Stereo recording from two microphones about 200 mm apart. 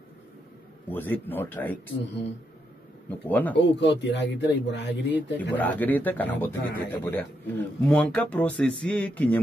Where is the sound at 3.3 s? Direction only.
10° left (ahead or behind).